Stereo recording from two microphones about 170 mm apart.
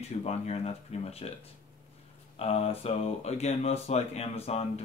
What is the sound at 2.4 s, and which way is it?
Speech, 35° left (ahead or behind).